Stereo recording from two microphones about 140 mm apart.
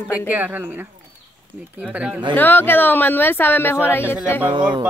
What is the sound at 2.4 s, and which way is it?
A woman's voice, 15° left (ahead or behind).